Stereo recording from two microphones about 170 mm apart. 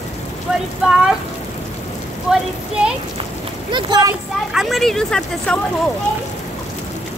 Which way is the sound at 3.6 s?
25° right (ahead or behind).